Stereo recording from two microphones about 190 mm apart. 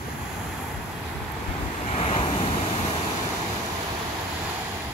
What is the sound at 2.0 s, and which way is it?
Waves, 30° left (ahead or behind).